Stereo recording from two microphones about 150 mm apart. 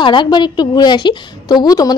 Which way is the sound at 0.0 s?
30° left (ahead or behind).